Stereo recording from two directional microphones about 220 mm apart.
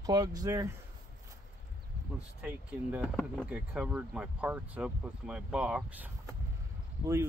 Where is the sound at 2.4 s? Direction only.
5° right (ahead or behind).